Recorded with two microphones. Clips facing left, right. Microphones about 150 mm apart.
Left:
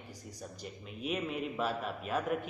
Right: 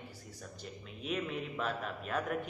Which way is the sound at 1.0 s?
10° left (ahead or behind).